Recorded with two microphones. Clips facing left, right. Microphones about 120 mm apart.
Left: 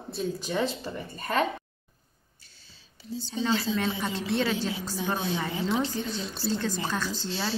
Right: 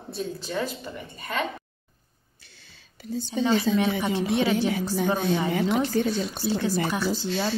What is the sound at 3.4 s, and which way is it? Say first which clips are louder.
A woman's voice: right 5 dB; 15° right (ahead or behind).